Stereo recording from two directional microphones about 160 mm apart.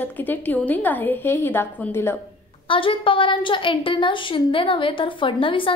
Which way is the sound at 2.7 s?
35° left (ahead or behind).